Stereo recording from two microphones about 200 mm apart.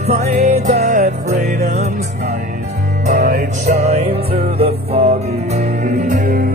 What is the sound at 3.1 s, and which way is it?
Music, 45° right (ahead or behind).